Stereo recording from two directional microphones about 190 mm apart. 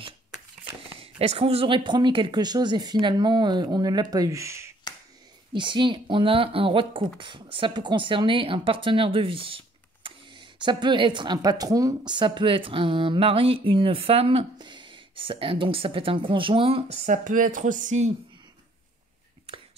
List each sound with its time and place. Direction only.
0.9 s speech: 30° right (ahead or behind); by 4.7 s 15° right (ahead or behind)
5.5 s speech: 25° right (ahead or behind)